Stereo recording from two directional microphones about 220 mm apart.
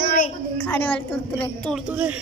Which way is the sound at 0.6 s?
10° left (ahead or behind).